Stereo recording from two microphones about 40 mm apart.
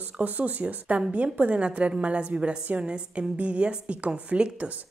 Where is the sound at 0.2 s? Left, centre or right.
Right.